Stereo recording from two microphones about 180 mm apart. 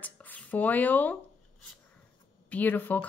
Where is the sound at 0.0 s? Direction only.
10° left (ahead or behind).